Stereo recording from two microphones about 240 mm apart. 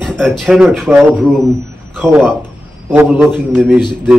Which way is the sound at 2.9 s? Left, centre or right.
Centre.